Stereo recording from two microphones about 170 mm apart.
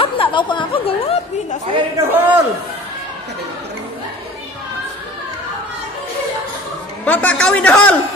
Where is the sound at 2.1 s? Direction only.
10° right (ahead or behind).